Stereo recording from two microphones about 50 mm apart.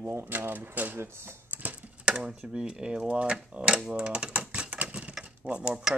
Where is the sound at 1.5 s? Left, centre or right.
Right.